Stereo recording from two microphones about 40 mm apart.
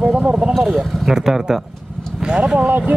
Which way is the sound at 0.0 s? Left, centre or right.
Right.